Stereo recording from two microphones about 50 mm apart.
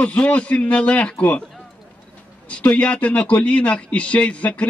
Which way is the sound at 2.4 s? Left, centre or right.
Left.